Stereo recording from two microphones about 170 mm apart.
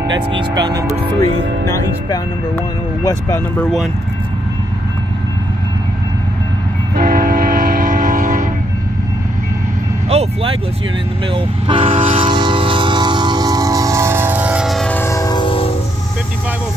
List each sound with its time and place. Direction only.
0.3 s speech: 25° right (ahead or behind)
1.7 s speech: 20° left (ahead or behind)
3.6 s speech: centre (ahead or behind)
7.0 s train: 55° right (ahead or behind)
10.0 s speech: 35° right (ahead or behind)
11.3 s train: 30° right (ahead or behind); by 15.7 s 30° left (ahead or behind)